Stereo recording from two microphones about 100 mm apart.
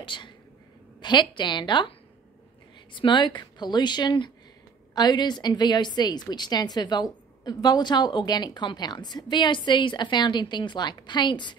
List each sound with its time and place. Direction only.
0.0 s whispering: 55° left (ahead or behind)
1.0 s a woman's voice: 50° left (ahead or behind)